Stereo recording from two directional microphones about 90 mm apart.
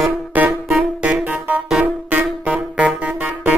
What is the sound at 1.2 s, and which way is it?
Music, 20° right (ahead or behind).